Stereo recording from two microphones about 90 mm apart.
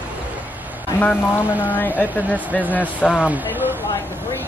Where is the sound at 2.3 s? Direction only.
20° left (ahead or behind).